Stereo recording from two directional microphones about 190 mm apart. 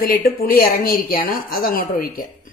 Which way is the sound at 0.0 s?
50° left (ahead or behind).